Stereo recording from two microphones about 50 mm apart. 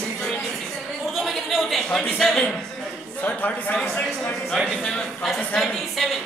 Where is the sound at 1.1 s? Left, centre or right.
Centre.